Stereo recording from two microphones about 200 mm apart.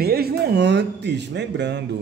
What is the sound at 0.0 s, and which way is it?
Speech, 50° right (ahead or behind).